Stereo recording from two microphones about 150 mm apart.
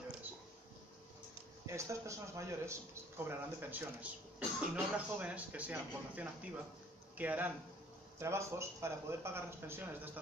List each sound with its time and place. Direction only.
1.7 s a man's voice: 20° right (ahead or behind)